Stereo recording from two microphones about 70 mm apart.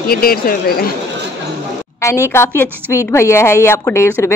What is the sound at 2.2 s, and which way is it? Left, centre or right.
A woman's voice, left.